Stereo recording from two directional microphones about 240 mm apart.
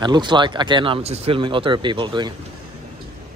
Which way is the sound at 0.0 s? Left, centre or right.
Centre.